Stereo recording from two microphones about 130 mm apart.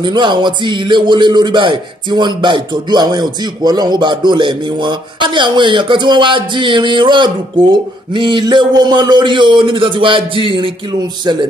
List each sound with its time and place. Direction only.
0.0 s speech: 40° right (ahead or behind)